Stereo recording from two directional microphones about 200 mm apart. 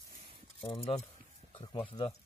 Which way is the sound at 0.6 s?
30° left (ahead or behind).